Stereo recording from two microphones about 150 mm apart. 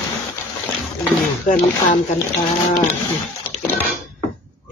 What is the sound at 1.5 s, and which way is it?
Speech, 55° left (ahead or behind).